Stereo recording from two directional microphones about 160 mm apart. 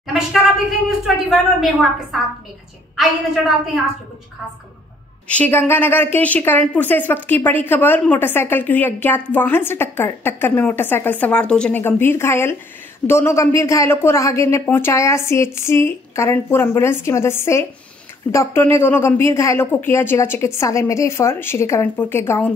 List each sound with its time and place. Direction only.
0.0 s speech: centre (ahead or behind)
3.0 s a woman's voice: centre (ahead or behind)
5.3 s a woman's voice: 10° left (ahead or behind)